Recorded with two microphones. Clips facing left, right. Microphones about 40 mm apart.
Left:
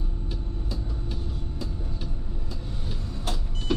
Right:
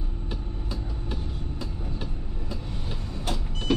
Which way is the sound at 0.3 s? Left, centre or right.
Right.